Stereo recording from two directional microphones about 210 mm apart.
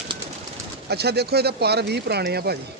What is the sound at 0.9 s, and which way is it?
Speech, 50° right (ahead or behind).